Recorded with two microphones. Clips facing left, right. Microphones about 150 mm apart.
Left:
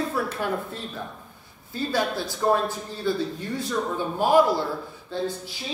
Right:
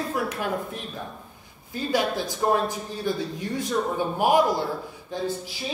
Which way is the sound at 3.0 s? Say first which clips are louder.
Left 2 dB; 15° right (ahead or behind).